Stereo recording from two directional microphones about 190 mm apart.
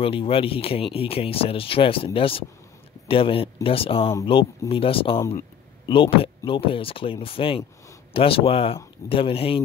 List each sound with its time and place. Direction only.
0.0 s speech: 30° left (ahead or behind)